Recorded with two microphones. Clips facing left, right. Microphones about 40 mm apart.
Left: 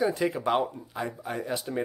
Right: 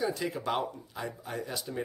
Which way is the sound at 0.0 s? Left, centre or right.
Left.